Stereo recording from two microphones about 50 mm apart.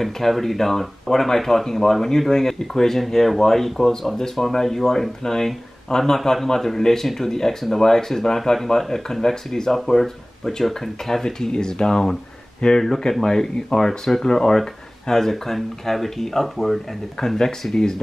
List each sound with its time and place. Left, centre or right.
0.0 s speech: centre